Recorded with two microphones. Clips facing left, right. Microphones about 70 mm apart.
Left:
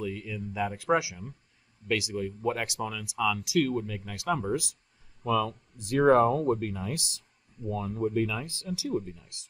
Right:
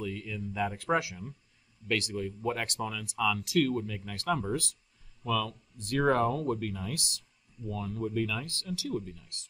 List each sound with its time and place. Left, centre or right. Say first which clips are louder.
0.0 s speech: left 2 dB; centre